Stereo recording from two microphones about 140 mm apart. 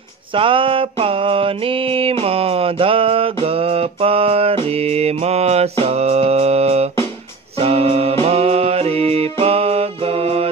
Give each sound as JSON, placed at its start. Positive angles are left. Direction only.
{"t": 0.3, "sound": "mantra", "side_deg": -40}
{"t": 2.2, "sound": "music", "side_deg": -45}